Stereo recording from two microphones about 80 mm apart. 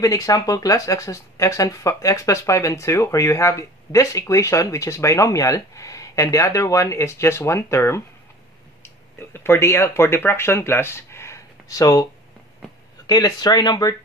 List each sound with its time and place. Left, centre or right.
0.0 s speech: left
9.3 s speech: left